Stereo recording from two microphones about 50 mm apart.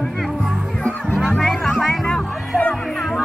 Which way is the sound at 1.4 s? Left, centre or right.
Centre.